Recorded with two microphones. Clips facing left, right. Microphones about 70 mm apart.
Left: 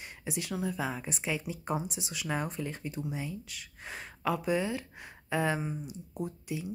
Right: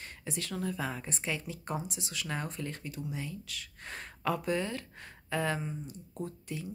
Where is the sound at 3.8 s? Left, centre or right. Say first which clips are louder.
Left 1 dB; centre.